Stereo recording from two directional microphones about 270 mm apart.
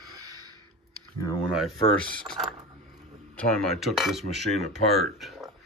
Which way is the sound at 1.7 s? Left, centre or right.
Centre.